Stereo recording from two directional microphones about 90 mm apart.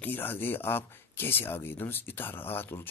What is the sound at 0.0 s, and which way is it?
Speech, 20° left (ahead or behind).